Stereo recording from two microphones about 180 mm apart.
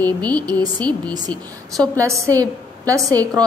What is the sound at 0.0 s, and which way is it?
Speech, 10° left (ahead or behind).